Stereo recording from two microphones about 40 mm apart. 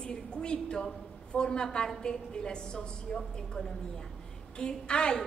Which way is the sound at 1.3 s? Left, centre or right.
Left.